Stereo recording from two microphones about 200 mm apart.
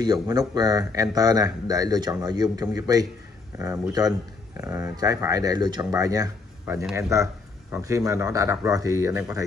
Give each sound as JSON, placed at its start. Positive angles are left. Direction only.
{"t": 0.0, "sound": "a man's voice", "side_deg": -20}